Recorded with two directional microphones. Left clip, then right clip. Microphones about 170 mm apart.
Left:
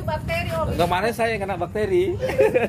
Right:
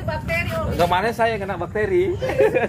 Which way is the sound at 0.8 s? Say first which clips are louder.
Right 3 dB; 10° left (ahead or behind).